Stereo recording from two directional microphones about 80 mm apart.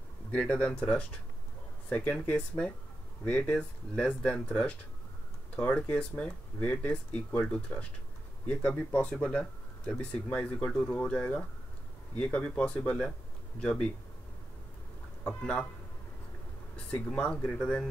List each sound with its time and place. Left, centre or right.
0.3 s speech: centre
15.2 s speech: centre
16.7 s speech: centre